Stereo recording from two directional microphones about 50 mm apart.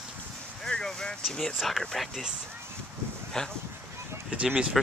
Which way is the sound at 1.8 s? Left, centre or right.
Centre.